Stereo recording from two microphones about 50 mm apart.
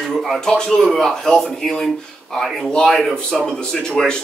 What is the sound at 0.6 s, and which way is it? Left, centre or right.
A man's voice, centre.